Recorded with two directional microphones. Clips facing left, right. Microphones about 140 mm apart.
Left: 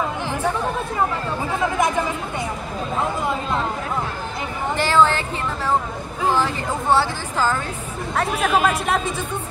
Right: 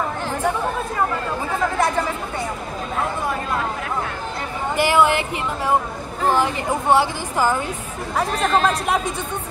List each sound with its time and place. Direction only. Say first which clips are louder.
1.6 s speech: even; 15° left (ahead or behind)
4.7 s speech: right 1 dB; 15° right (ahead or behind)
6.2 s speech: right 2 dB; 15° right (ahead or behind)
8.2 s speech: even; 5° left (ahead or behind)